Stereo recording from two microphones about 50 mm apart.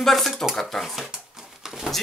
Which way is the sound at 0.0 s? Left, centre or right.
Centre.